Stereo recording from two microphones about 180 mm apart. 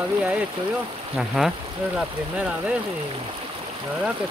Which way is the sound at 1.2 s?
Centre (ahead or behind).